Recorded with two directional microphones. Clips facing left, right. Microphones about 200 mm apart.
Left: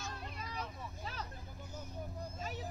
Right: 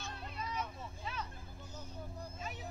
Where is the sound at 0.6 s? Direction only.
35° left (ahead or behind).